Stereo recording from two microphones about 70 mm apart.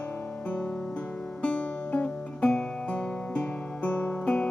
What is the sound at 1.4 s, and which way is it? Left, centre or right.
Music, centre.